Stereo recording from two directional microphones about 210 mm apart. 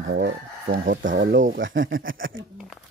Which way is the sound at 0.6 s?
45° right (ahead or behind).